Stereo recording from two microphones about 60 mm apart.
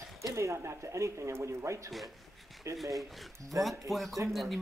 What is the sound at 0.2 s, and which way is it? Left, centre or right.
Speech, right.